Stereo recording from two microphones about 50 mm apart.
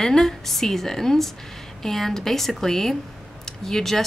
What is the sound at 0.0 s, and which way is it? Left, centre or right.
Speech, centre.